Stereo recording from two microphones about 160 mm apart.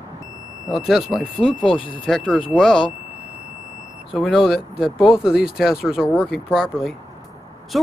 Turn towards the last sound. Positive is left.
turn(degrees=0)  # may be behind; listen again after turning